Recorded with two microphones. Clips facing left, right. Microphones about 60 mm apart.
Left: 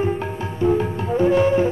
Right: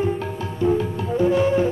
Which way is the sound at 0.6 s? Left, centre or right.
Left.